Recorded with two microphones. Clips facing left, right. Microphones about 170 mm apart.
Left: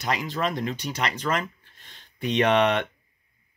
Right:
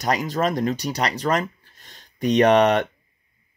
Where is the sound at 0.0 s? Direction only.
45° right (ahead or behind).